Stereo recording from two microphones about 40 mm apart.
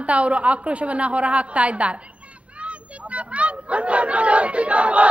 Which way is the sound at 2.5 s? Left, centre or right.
Right.